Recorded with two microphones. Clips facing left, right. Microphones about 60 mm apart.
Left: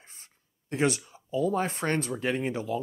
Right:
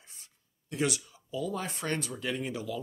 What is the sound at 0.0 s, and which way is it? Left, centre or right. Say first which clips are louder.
Speech: left 3 dB; left.